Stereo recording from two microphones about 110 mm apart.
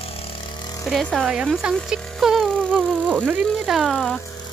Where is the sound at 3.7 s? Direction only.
Centre (ahead or behind).